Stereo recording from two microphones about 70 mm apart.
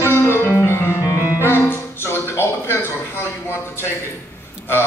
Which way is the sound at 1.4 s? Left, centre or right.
Left.